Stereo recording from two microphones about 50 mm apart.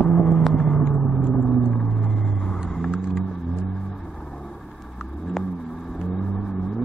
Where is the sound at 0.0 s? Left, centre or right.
Left.